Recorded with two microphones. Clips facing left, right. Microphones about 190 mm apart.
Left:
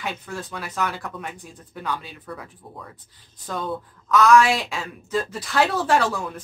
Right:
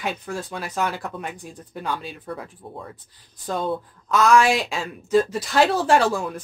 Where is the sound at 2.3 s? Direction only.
30° right (ahead or behind).